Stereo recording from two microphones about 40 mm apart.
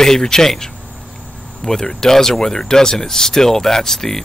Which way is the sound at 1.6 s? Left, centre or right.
Centre.